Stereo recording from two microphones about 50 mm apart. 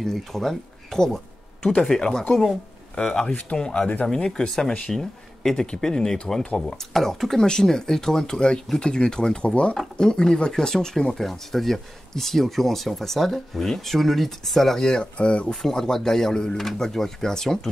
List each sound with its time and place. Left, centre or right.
0.0 s speech: centre; by 15.5 s left
15.6 s speech: centre